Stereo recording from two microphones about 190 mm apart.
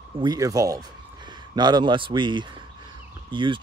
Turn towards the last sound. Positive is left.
turn(degrees=-25)  # may be behind; listen again after turning